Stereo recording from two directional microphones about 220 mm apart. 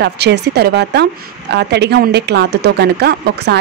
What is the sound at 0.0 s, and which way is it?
A woman's voice, 50° right (ahead or behind).